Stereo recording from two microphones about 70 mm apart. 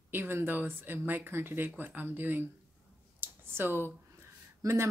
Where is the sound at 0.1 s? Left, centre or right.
Right.